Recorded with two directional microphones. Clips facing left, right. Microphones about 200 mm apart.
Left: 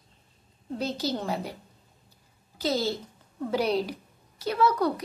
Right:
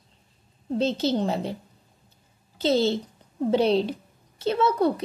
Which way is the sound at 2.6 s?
25° right (ahead or behind).